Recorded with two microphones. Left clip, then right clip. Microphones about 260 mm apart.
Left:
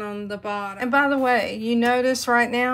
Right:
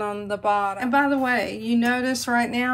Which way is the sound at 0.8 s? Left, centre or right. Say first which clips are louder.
Left 1 dB; left.